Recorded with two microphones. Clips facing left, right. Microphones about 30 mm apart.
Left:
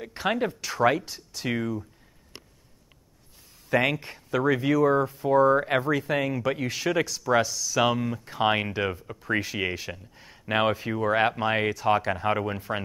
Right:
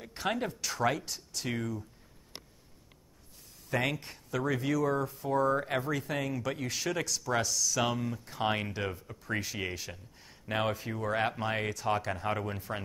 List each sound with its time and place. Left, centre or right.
0.0 s speech: centre
3.7 s speech: centre
10.4 s speech: left